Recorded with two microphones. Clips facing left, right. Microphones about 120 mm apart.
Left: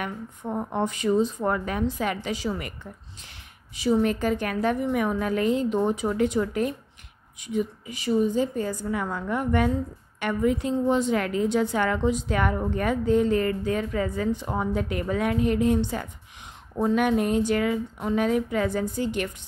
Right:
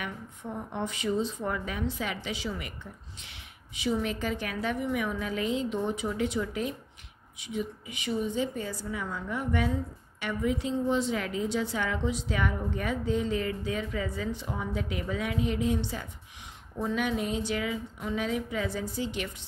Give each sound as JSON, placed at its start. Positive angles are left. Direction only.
{"t": 0.0, "sound": "a woman's voice", "side_deg": 45}
{"t": 3.7, "sound": "a woman's voice", "side_deg": 40}
{"t": 8.9, "sound": "a woman's voice", "side_deg": 60}